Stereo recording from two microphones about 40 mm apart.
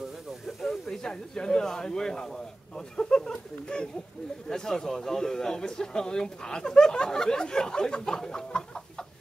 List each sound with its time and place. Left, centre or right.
0.6 s speech: centre